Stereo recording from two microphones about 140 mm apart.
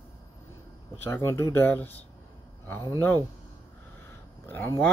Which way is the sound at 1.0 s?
20° left (ahead or behind).